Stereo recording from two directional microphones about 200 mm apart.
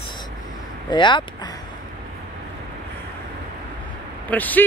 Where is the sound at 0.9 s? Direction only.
25° left (ahead or behind).